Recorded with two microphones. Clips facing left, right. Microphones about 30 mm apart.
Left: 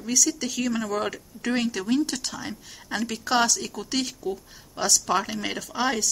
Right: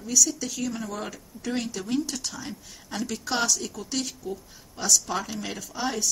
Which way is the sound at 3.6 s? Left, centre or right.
Left.